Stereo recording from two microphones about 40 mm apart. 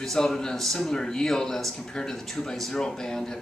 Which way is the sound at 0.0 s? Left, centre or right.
Centre.